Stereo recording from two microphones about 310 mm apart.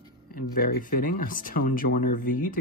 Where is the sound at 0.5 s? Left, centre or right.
Left.